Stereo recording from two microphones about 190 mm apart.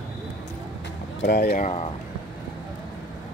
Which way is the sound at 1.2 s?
55° left (ahead or behind).